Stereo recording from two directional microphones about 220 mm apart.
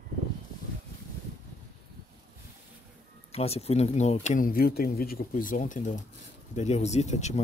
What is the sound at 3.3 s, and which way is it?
Speech, 30° left (ahead or behind).